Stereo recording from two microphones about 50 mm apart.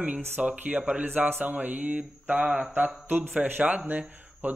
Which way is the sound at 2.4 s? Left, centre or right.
Centre.